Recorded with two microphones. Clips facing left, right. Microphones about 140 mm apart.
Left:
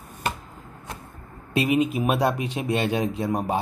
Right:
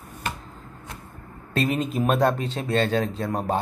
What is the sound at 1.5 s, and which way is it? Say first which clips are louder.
Speech: left 2 dB; 10° left (ahead or behind).